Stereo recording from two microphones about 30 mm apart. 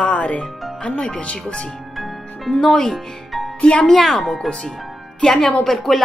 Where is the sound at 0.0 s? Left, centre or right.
Left.